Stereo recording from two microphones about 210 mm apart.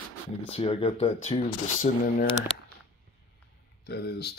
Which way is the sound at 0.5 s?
25° left (ahead or behind).